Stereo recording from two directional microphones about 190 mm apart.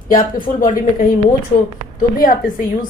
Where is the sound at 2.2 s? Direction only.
45° left (ahead or behind).